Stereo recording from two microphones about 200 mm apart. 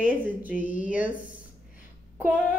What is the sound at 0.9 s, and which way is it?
Speech, 5° right (ahead or behind).